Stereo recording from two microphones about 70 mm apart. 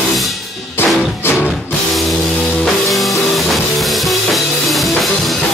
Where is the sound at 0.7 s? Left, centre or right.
Left.